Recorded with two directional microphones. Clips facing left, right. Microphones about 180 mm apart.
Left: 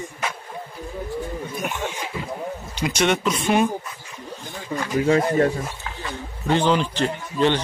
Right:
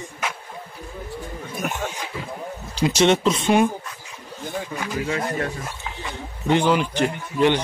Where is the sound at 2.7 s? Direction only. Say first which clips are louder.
Right 4 dB; 30° right (ahead or behind).